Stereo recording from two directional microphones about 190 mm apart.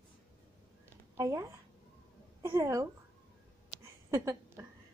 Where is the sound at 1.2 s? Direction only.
15° right (ahead or behind).